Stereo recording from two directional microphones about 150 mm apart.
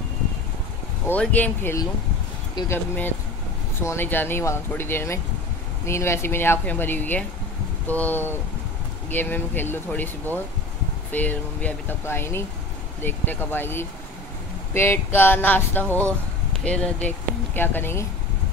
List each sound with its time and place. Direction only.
1.0 s speech: 10° left (ahead or behind)